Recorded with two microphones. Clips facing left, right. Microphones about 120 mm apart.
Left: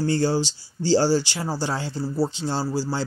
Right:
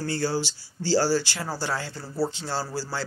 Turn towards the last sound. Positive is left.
turn(degrees=20)  # may be behind; listen again after turning